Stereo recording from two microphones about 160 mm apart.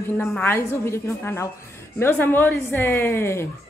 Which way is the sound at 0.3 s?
10° left (ahead or behind).